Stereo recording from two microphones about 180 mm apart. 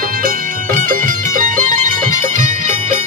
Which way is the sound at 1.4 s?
50° right (ahead or behind).